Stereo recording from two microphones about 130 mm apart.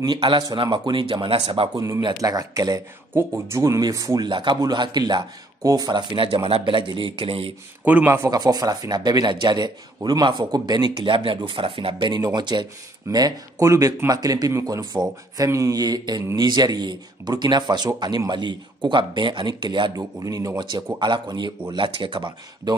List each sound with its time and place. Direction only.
0.0 s speech: 35° right (ahead or behind)
2.0 s speech: 30° right (ahead or behind)
4.3 s speech: 35° right (ahead or behind)
7.8 s speech: 15° right (ahead or behind); by 22.8 s 40° right (ahead or behind)